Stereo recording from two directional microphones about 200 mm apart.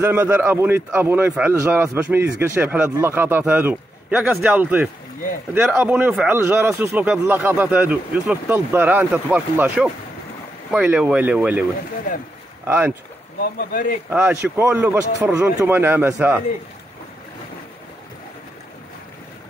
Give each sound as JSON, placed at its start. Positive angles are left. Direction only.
{"t": 0.0, "sound": "a man's voice", "side_deg": -10}
{"t": 12.6, "sound": "a man's voice", "side_deg": -10}
{"t": 13.6, "sound": "speech", "side_deg": 45}
{"t": 14.1, "sound": "a man's voice", "side_deg": -10}